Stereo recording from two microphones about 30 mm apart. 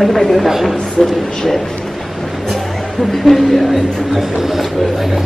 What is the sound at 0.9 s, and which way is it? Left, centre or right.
Speech, centre.